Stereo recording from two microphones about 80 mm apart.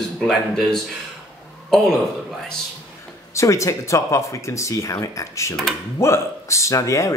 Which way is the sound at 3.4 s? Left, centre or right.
Left.